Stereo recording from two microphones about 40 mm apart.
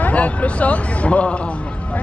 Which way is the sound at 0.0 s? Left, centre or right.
Left.